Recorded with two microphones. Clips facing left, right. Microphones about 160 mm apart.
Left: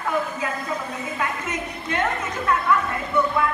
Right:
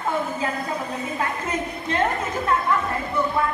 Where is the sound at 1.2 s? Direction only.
30° right (ahead or behind).